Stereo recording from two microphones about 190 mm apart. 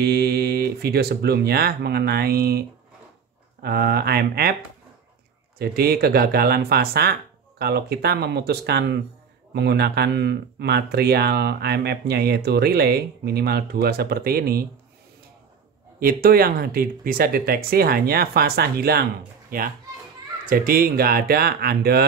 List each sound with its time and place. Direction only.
0.0 s speech: 55° right (ahead or behind)
3.6 s speech: 55° right (ahead or behind)
5.6 s speech: 55° right (ahead or behind)
16.0 s speech: 50° right (ahead or behind)